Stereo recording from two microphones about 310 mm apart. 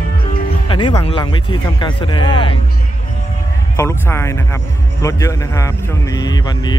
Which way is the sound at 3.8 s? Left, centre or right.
Centre.